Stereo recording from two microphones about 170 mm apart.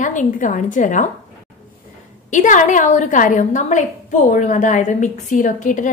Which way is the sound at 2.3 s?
45° left (ahead or behind).